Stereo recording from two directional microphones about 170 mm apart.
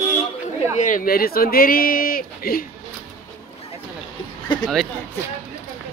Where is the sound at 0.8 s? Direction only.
50° left (ahead or behind).